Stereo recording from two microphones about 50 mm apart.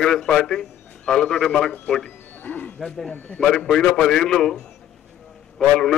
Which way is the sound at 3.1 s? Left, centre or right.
Left.